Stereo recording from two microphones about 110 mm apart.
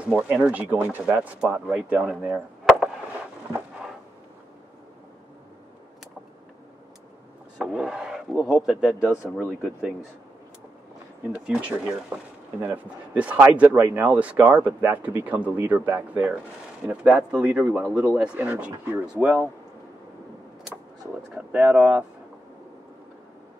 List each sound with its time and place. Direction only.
0.1 s speech: 10° right (ahead or behind)
7.5 s speech: 5° right (ahead or behind)
11.3 s speech: 10° right (ahead or behind)
21.4 s speech: 10° right (ahead or behind)